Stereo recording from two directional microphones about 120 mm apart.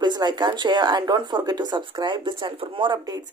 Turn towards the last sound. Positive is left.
turn(degrees=-35)  # may be behind; listen again after turning